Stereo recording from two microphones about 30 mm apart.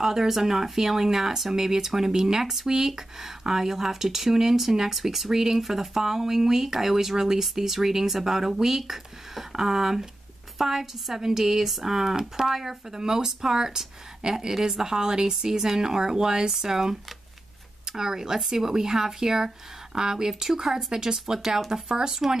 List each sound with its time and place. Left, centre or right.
0.0 s speech: centre